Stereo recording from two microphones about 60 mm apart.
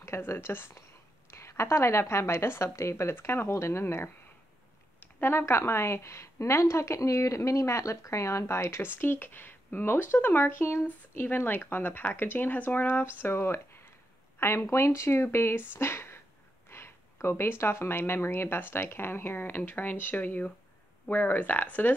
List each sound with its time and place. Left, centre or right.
0.2 s a woman's voice: left
3.8 s speech: left
5.0 s a sound: left
5.4 s speech: left
8.9 s speech: left